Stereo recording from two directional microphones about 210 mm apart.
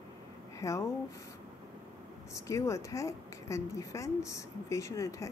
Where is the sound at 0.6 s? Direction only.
15° left (ahead or behind).